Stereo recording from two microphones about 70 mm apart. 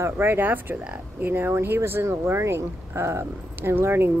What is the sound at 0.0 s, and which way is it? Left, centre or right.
Speech, right.